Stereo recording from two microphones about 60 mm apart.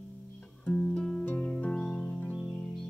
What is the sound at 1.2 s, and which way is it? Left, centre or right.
Music, left.